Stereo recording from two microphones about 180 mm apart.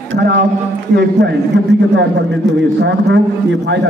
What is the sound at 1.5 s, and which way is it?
Speech, 80° right.